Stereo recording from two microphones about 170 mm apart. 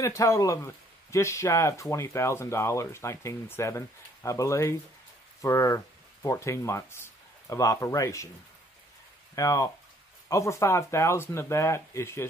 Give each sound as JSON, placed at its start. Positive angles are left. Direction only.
{"t": 0.0, "sound": "speech", "side_deg": 20}
{"t": 9.3, "sound": "speech", "side_deg": 20}